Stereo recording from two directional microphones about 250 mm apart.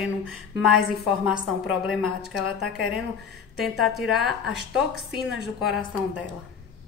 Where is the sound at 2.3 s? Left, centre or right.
Left.